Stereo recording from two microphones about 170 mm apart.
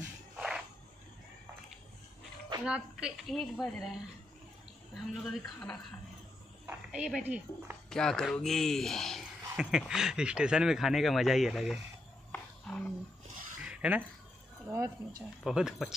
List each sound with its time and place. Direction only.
2.6 s a man's voice: 5° right (ahead or behind)
4.9 s a man's voice: centre (ahead or behind)
6.6 s a woman's voice: 10° right (ahead or behind)
7.9 s a man's voice: 5° left (ahead or behind)
12.3 s a sound: 5° left (ahead or behind)
13.7 s a sound: 10° right (ahead or behind)
14.7 s speech: 15° right (ahead or behind)
15.4 s a man's voice: 5° right (ahead or behind)